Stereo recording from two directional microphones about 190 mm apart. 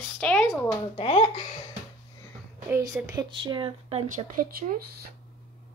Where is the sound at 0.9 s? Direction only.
35° left (ahead or behind).